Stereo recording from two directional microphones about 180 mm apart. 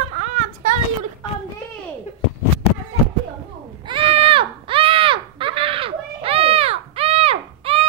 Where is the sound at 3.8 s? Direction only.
30° right (ahead or behind).